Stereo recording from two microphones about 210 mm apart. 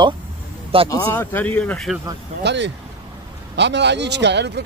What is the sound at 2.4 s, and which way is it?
Speech, 55° right (ahead or behind).